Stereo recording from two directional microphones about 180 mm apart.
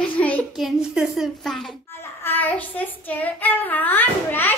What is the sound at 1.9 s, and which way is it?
Child singing, 10° left (ahead or behind).